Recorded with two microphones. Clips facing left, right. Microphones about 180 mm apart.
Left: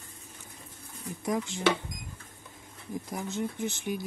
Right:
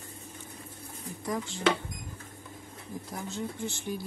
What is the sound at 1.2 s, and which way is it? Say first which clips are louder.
Speech: left 1 dB; 15° left (ahead or behind).